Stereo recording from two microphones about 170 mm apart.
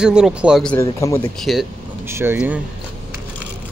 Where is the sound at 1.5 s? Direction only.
Centre (ahead or behind).